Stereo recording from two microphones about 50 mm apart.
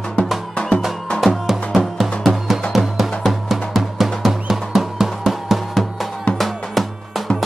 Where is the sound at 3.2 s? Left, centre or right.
Centre.